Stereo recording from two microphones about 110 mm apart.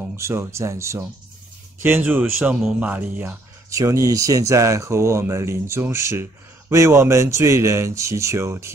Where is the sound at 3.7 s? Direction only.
30° right (ahead or behind).